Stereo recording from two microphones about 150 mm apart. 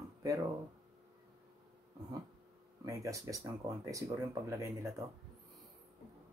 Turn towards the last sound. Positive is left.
turn(degrees=-20)  # may be behind; listen again after turning